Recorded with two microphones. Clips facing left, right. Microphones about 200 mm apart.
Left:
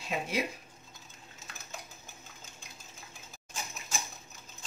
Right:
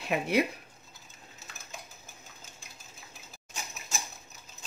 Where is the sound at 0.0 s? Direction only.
65° right (ahead or behind).